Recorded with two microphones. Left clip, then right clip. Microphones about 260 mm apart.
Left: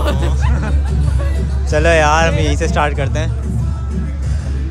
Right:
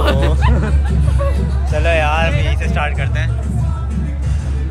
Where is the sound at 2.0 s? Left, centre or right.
Left.